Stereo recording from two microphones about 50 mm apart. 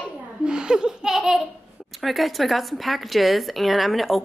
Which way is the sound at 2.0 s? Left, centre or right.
Centre.